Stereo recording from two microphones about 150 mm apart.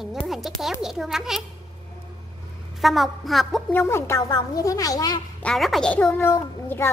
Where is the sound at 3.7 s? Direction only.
15° left (ahead or behind).